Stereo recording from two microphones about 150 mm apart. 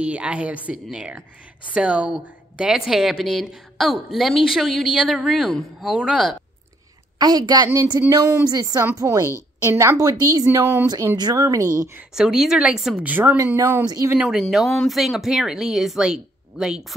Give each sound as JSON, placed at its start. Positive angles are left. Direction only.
{"t": 0.0, "sound": "speech", "side_deg": -10}
{"t": 7.2, "sound": "a woman's voice", "side_deg": -25}
{"t": 12.1, "sound": "a woman's voice", "side_deg": -5}
{"t": 14.1, "sound": "speech", "side_deg": -5}